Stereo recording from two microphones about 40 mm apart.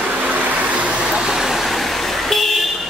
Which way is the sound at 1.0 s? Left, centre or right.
Centre.